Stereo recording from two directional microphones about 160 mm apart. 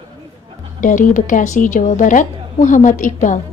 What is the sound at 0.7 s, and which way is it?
A woman's voice, 55° left (ahead or behind).